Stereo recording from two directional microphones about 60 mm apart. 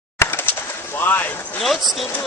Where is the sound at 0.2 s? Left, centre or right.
Left.